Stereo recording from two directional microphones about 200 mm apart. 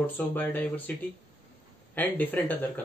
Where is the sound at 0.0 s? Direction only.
10° left (ahead or behind).